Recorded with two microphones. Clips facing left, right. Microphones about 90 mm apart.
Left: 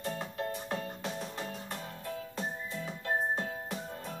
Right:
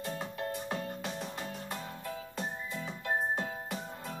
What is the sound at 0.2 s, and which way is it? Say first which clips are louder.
Music: even; centre (ahead or behind).